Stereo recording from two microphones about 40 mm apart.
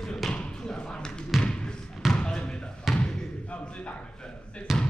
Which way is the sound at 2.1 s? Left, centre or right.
Left.